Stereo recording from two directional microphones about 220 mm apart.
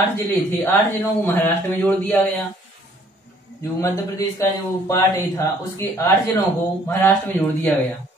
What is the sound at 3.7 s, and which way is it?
Speech, 10° left (ahead or behind).